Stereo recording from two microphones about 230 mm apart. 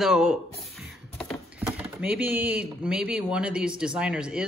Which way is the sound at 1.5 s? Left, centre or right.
Centre.